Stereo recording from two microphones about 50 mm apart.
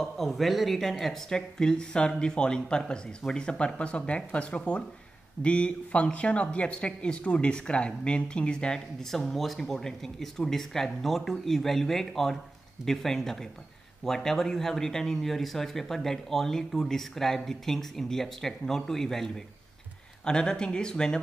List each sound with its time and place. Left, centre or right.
0.0 s speech: centre
9.0 s speech: centre